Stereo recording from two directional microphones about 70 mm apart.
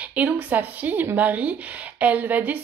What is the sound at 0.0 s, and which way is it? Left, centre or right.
A woman's voice, centre.